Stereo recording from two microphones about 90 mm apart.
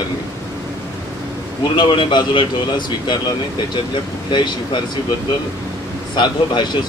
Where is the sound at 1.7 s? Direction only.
60° left (ahead or behind).